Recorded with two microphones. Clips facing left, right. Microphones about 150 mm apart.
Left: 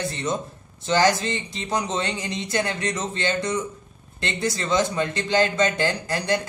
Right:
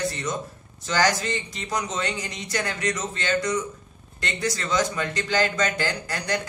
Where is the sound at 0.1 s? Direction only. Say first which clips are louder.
Left 3 dB; 30° left (ahead or behind).